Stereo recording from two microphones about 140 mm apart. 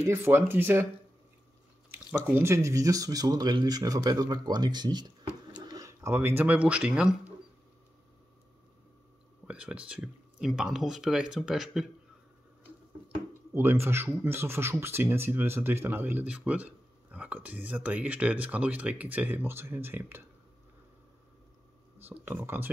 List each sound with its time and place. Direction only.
0.0 s speech: 20° right (ahead or behind)
2.2 s speech: 15° right (ahead or behind)
9.5 s speech: 10° right (ahead or behind)
13.5 s speech: 15° right (ahead or behind)
22.1 s speech: 15° right (ahead or behind)